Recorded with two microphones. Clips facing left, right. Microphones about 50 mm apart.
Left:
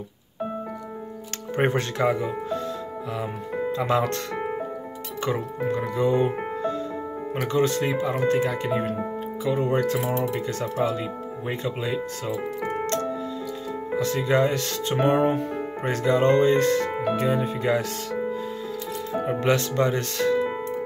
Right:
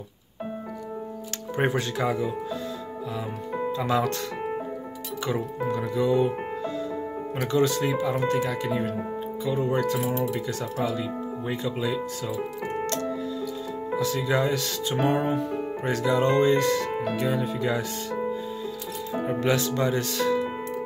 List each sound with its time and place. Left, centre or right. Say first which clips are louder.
1.6 s speech: left 2 dB; left
3.7 s speech: left 2 dB; left
5.2 s speech: left 2 dB; left
7.4 s speech: even; left
9.5 s speech: left 2 dB; left
11.8 s speech: even; left
13.9 s speech: left 3 dB; left
17.6 s speech: left 3 dB; left
19.2 s speech: left 1 dB; left